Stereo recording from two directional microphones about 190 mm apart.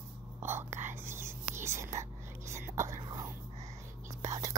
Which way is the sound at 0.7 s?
40° right (ahead or behind).